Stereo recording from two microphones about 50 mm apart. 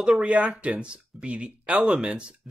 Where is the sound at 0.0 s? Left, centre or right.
Centre.